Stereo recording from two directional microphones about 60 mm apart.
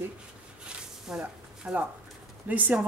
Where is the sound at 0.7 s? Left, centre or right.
Centre.